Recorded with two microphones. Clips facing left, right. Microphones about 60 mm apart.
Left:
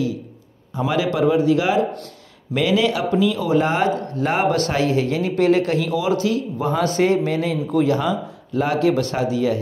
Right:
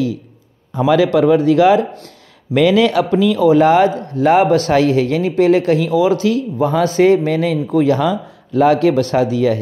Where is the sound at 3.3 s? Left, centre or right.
Right.